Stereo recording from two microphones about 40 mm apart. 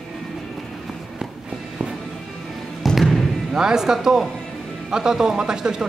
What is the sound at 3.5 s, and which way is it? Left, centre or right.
Speech, centre.